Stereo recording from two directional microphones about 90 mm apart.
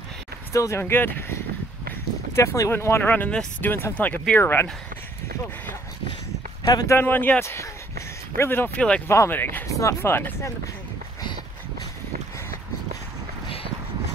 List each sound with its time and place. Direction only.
0.5 s speech: 35° left (ahead or behind)
2.3 s speech: 35° left (ahead or behind)
3.1 s speech: 15° left (ahead or behind)
6.6 s speech: 50° left (ahead or behind)
6.9 s speech: 20° left (ahead or behind)
9.0 s speech: 30° left (ahead or behind)
9.3 s speech: 20° left (ahead or behind)
9.7 s speech: 35° left (ahead or behind)